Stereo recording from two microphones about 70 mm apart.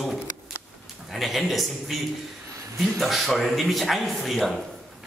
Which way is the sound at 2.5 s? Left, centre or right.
Right.